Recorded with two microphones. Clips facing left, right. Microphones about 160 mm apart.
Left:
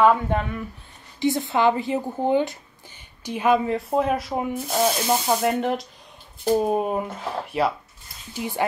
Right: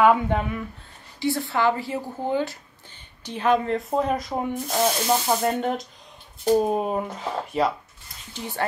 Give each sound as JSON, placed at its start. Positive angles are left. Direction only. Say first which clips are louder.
{"t": 0.0, "sound": "speech", "louder": "even", "side_deg": -5}
{"t": 1.2, "sound": "a woman's voice", "louder": "left 2 dB", "side_deg": 20}